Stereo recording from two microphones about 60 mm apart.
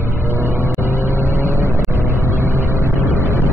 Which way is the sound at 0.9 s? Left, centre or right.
Right.